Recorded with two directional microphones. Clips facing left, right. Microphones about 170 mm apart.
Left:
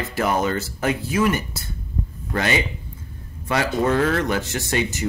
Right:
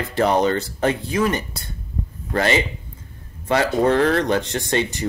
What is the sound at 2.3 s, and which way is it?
Speech, 30° right (ahead or behind).